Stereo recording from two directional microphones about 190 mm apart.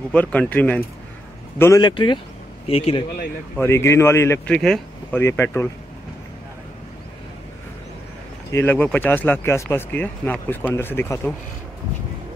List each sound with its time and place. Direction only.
0.1 s speech: 5° left (ahead or behind)
1.6 s speech: 20° left (ahead or behind)
3.5 s speech: 15° left (ahead or behind)
4.6 s speech: centre (ahead or behind)
5.2 s speech: 15° left (ahead or behind)
8.5 s speech: 10° left (ahead or behind)